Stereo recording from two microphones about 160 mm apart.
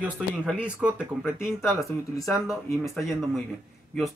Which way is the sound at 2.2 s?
Centre (ahead or behind).